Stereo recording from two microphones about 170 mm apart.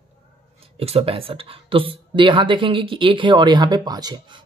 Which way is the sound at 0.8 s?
35° right (ahead or behind).